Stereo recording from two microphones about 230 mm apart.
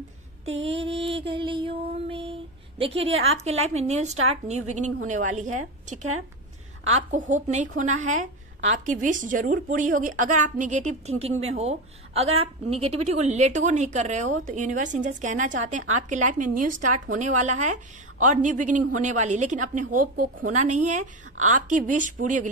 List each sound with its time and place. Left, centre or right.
0.5 s a sound: right
1.0 s a woman's voice: right
5.9 s a woman's voice: right
7.1 s a woman's voice: right
21.0 s a woman's voice: right
21.5 s a woman's voice: right